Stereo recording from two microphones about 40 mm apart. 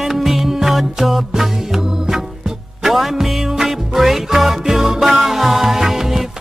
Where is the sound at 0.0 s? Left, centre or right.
Centre.